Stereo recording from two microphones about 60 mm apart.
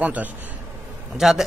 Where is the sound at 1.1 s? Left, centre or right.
Centre.